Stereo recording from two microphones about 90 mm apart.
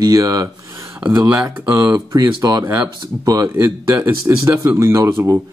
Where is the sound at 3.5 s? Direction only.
20° right (ahead or behind).